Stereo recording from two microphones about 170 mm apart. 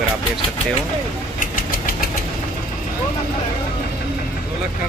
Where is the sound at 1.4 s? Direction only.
55° left (ahead or behind).